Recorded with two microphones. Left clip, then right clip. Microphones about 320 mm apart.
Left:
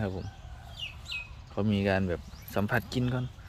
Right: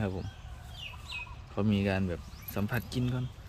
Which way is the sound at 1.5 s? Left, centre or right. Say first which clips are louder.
Left 3 dB; centre.